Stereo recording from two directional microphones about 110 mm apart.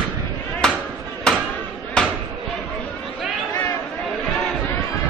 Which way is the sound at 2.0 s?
5° left (ahead or behind).